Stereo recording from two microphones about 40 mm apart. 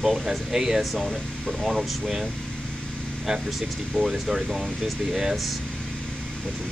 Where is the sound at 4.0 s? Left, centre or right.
Centre.